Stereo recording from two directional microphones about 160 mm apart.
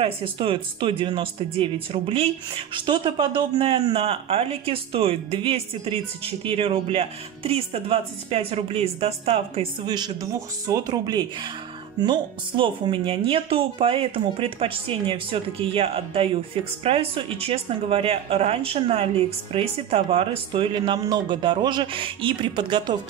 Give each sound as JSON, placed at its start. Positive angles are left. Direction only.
{"t": 0.0, "sound": "speech", "side_deg": -35}
{"t": 9.8, "sound": "speech", "side_deg": -25}